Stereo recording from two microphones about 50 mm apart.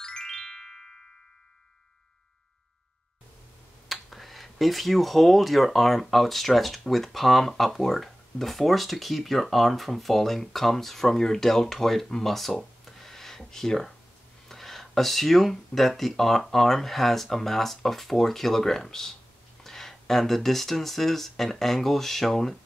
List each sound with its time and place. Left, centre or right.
0.0 s music: centre
3.9 s speech: centre